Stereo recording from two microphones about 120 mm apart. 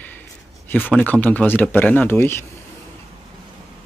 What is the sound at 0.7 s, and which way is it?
Speech, 15° left (ahead or behind).